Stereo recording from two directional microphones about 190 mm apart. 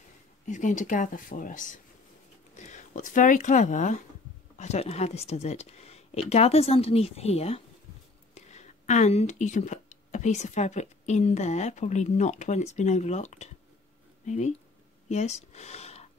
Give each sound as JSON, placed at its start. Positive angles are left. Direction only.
{"t": 0.5, "sound": "speech", "side_deg": 40}